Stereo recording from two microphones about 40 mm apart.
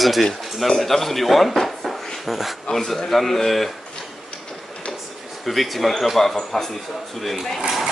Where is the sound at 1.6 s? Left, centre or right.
Centre.